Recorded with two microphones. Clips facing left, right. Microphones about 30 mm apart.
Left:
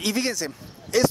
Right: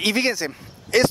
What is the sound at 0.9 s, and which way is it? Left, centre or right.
Speech, right.